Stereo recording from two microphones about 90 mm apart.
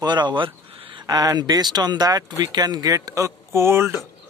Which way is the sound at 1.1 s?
45° right (ahead or behind).